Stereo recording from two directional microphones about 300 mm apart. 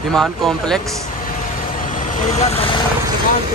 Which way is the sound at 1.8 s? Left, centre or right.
Left.